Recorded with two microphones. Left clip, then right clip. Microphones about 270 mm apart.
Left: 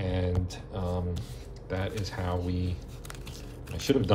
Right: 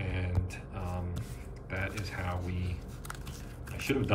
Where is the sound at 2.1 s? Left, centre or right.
Left.